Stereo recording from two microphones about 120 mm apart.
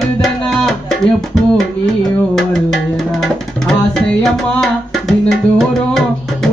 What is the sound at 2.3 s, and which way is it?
Music, centre (ahead or behind).